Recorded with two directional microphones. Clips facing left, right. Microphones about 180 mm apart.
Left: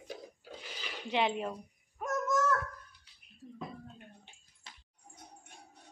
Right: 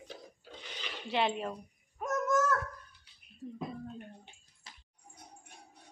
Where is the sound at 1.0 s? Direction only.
15° left (ahead or behind).